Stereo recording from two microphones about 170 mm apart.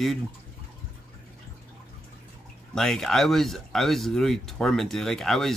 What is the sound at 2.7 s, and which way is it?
Speech, centre (ahead or behind).